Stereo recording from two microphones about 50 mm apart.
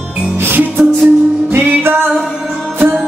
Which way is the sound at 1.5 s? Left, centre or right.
Right.